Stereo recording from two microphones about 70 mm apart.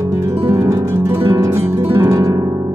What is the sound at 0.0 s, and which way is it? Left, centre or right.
Music, right.